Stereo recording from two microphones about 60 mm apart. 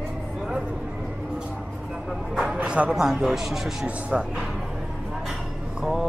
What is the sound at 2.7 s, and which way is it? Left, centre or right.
A man's voice, centre.